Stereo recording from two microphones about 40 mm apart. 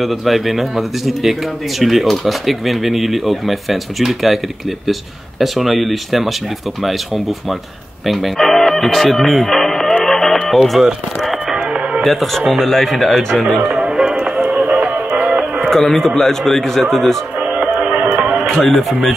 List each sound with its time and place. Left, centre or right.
0.0 s speech: centre
5.4 s speech: centre
8.4 s music: centre
10.5 s speech: centre
11.5 s music: centre
12.0 s speech: centre
13.7 s music: right
14.7 s music: right
15.7 s a man's voice: centre
17.6 s music: right
18.6 s speech: centre